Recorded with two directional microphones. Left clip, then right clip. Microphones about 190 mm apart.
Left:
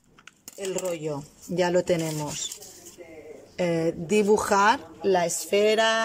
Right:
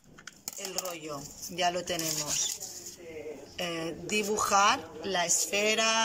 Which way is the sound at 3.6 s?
50° left (ahead or behind).